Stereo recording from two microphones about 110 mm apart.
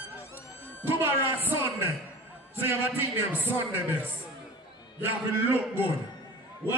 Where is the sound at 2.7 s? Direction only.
20° right (ahead or behind).